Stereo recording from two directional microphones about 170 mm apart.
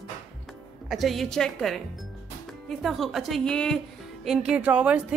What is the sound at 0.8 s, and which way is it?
Speech, centre (ahead or behind).